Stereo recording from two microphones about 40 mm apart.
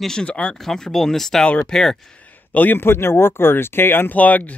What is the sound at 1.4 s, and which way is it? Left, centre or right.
Speech, left.